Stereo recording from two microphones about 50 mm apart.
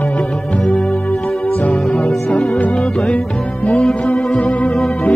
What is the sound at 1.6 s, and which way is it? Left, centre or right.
Music, left.